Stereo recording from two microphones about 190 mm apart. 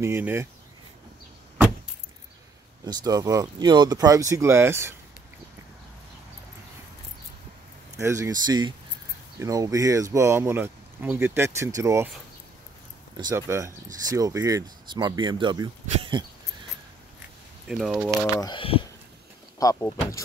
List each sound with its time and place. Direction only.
0.0 s speech: 10° right (ahead or behind)
2.8 s speech: 20° right (ahead or behind)
8.0 s speech: 15° right (ahead or behind)
13.2 s speech: 15° right (ahead or behind)
17.6 s speech: 5° right (ahead or behind)
18.2 s speech: 20° left (ahead or behind)
19.6 s speech: 15° left (ahead or behind)